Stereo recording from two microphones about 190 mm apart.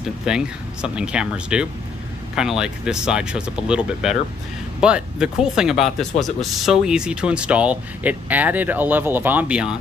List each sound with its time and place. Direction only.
0.3 s speech: 5° right (ahead or behind)